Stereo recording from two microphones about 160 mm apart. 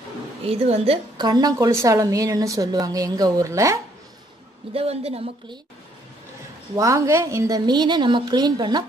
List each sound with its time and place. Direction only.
0.5 s speech: 40° right (ahead or behind)
1.1 s a woman's voice: 25° right (ahead or behind)
4.7 s speech: 40° right (ahead or behind)
6.7 s a woman's voice: 20° right (ahead or behind)